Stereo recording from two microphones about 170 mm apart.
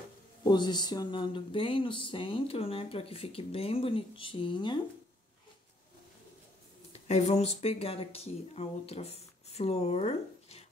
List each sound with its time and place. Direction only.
0.4 s speech: 25° left (ahead or behind)
6.9 s speech: 40° left (ahead or behind)